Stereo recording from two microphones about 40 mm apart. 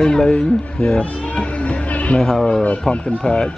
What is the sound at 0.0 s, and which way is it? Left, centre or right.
Speech, centre.